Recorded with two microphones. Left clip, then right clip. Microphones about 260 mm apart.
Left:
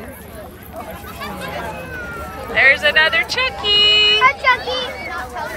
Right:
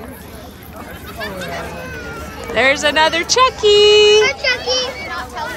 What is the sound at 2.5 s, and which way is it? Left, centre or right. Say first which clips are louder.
Speech: left 1 dB; centre.